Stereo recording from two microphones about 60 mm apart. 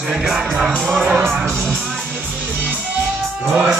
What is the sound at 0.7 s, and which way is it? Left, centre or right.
Speech, centre.